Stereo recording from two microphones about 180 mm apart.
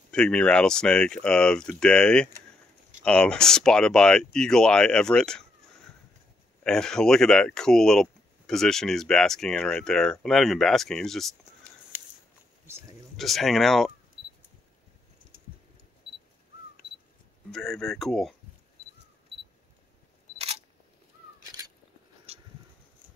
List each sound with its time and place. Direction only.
0.1 s speech: 5° left (ahead or behind)
6.6 s speech: 5° left (ahead or behind)
13.1 s speech: centre (ahead or behind)
17.5 s speech: centre (ahead or behind)
20.3 s single-lens reflex camera: 35° right (ahead or behind)
21.4 s crow: 20° right (ahead or behind)
22.3 s a sound: 35° right (ahead or behind)